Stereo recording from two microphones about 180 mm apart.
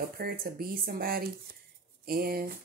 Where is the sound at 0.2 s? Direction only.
55° right (ahead or behind).